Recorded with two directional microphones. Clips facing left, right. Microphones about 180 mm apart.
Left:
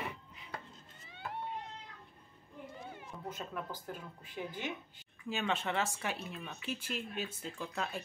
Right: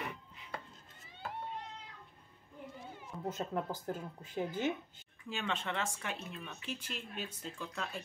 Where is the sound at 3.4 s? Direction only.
30° right (ahead or behind).